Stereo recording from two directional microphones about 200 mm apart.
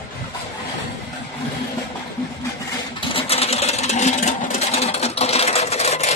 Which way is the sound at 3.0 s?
25° left (ahead or behind).